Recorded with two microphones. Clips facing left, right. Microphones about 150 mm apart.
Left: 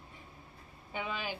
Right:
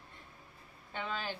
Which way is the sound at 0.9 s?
10° left (ahead or behind).